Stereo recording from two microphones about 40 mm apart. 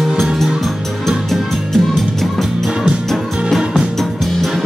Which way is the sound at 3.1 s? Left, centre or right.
Centre.